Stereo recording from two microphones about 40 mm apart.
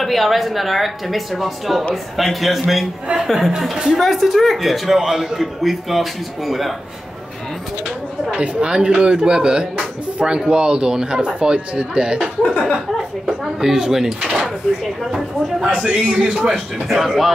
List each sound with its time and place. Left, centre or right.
0.0 s speech: centre
3.7 s a man's voice: centre
4.0 s speech: centre
8.4 s speech: right
12.9 s a man's voice: centre